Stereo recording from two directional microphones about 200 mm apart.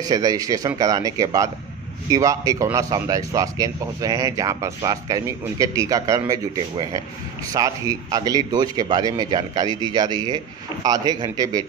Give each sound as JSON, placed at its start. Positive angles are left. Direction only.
{"t": 0.0, "sound": "a man's voice", "side_deg": -20}